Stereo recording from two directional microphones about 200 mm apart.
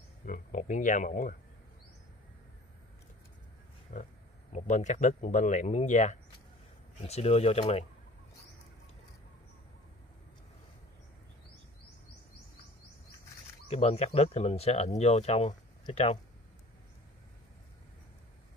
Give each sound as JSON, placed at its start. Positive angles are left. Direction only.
{"t": 0.2, "sound": "speech", "side_deg": 40}
{"t": 3.9, "sound": "speech", "side_deg": 35}
{"t": 13.7, "sound": "speech", "side_deg": 30}